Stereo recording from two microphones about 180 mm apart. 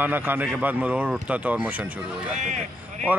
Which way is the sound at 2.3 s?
40° right (ahead or behind).